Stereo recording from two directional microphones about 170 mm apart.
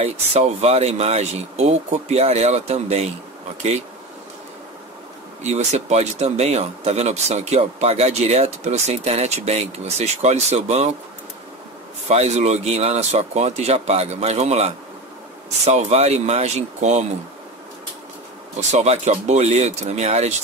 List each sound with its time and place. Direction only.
0.0 s speech: 40° right (ahead or behind)
5.4 s speech: 40° right (ahead or behind)
12.1 s speech: 40° right (ahead or behind)
18.6 s speech: 40° right (ahead or behind)